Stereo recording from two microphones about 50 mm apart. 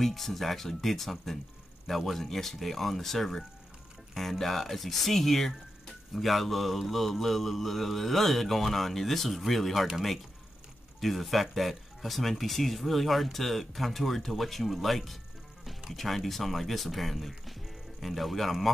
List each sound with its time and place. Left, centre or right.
0.0 s speech: centre